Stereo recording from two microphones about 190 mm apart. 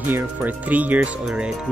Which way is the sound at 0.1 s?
10° right (ahead or behind).